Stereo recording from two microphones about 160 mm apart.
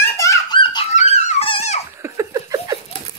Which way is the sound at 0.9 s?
45° left (ahead or behind).